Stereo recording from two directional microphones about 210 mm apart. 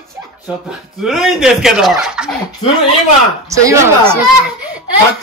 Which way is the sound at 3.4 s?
15° right (ahead or behind).